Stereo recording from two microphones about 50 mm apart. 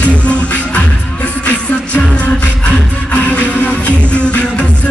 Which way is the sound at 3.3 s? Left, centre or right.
Left.